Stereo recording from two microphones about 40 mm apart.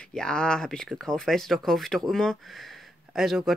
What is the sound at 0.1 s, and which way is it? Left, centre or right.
Speech, centre.